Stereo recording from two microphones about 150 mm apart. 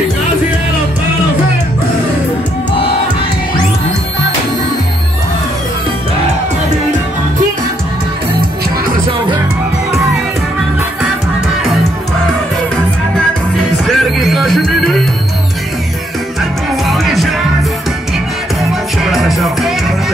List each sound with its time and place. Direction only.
13.8 s music: centre (ahead or behind)
16.8 s music: centre (ahead or behind)
18.6 s music: centre (ahead or behind)